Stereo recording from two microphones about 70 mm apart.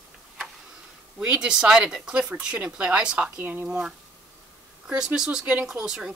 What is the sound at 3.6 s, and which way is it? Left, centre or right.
Speech, centre.